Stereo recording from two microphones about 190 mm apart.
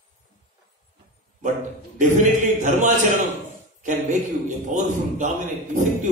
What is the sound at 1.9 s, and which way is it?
A man's voice, 40° right (ahead or behind).